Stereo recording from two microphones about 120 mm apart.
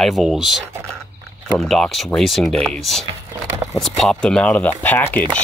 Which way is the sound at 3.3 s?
20° right (ahead or behind).